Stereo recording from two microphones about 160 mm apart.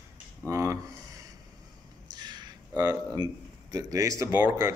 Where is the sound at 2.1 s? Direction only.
25° right (ahead or behind).